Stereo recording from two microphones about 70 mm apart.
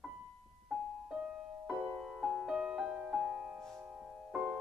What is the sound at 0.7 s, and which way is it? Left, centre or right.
Music, centre.